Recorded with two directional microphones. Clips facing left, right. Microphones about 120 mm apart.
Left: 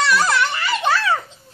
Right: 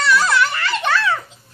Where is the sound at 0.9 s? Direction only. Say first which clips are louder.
Even; 35° left (ahead or behind).